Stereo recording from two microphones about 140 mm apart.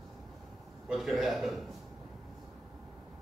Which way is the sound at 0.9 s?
Centre (ahead or behind).